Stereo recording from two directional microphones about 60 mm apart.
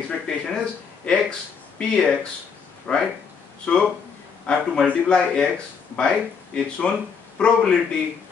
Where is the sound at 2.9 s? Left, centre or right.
Centre.